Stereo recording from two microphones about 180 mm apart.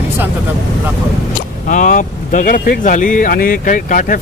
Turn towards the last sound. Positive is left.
turn(degrees=45)  # may be behind; listen again after turning